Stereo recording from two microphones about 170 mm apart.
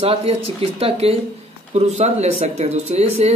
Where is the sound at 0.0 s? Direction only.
35° right (ahead or behind).